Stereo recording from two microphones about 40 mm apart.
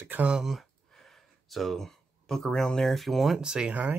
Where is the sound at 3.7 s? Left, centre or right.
Right.